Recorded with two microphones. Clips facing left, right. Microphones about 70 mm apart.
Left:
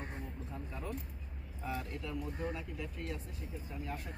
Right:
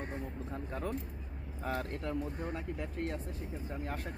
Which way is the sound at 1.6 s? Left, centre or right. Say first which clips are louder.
Right 4 dB; right.